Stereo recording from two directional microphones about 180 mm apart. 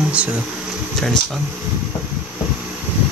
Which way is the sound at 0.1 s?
5° right (ahead or behind).